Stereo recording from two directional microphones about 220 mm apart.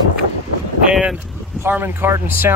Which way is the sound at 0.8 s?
5° right (ahead or behind).